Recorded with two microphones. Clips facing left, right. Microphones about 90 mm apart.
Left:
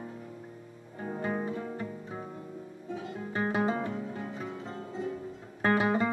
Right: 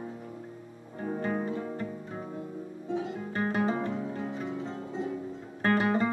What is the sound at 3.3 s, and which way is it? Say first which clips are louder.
Music: even; 5° left (ahead or behind).